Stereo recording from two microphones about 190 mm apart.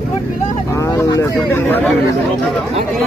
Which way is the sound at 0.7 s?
15° left (ahead or behind).